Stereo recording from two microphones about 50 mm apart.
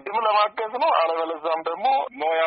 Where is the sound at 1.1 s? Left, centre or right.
Centre.